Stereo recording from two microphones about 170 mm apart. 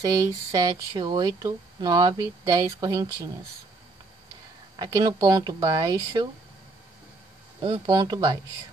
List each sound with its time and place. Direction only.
0.0 s speech: 20° right (ahead or behind)
4.7 s speech: 25° right (ahead or behind)
7.6 s speech: 25° right (ahead or behind)